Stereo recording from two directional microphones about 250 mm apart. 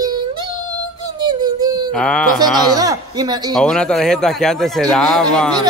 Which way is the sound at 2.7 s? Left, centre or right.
Centre.